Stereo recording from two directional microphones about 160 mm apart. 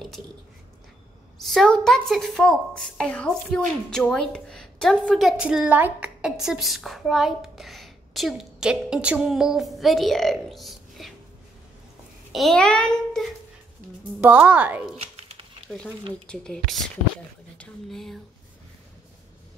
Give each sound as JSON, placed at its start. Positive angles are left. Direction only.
{"t": 1.4, "sound": "a woman's voice", "side_deg": 0}
{"t": 12.3, "sound": "a woman's voice", "side_deg": 0}
{"t": 14.2, "sound": "a woman's voice", "side_deg": -10}